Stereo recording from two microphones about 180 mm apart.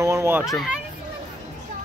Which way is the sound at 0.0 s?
15° right (ahead or behind).